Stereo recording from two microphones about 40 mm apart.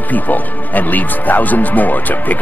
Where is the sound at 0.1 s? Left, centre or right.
Left.